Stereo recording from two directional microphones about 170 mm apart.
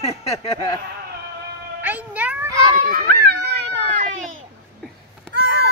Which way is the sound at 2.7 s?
55° right (ahead or behind).